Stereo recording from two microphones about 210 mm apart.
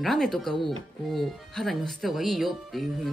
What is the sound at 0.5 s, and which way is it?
Speech, 25° right (ahead or behind).